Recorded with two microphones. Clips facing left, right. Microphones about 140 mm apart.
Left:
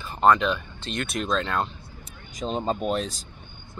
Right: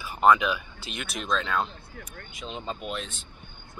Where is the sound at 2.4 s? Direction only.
40° left (ahead or behind).